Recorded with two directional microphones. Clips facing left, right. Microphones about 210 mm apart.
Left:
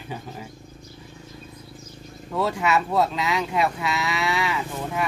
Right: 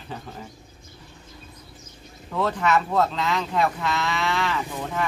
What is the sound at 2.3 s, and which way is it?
Speech, 10° left (ahead or behind).